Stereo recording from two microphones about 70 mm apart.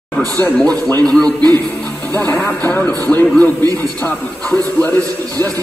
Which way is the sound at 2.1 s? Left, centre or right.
Left.